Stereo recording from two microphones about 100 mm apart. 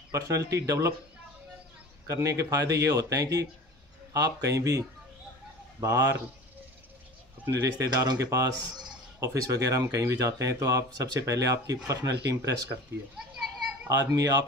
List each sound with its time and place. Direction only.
0.1 s speech: 35° right (ahead or behind)
2.0 s speech: 30° right (ahead or behind)
7.4 s speech: 30° right (ahead or behind)
13.8 s speech: 35° right (ahead or behind)